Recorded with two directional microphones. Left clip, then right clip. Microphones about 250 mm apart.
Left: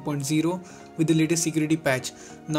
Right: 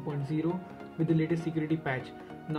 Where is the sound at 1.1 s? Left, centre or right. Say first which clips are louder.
Left 7 dB; left.